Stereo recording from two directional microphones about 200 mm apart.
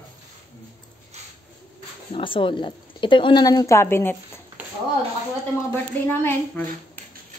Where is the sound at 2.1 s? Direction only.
25° left (ahead or behind).